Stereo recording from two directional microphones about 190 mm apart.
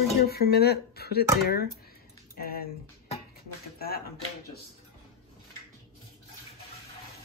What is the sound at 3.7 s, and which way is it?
Speech, 55° left (ahead or behind).